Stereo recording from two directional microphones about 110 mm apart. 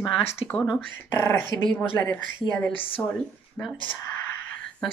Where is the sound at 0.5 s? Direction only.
10° left (ahead or behind).